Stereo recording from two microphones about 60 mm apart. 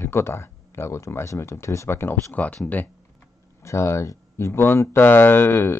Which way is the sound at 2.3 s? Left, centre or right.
Left.